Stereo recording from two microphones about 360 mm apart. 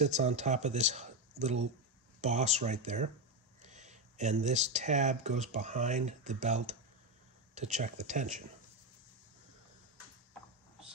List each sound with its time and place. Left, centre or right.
0.0 s speech: centre